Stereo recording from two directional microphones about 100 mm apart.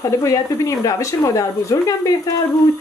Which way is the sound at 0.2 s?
35° left (ahead or behind).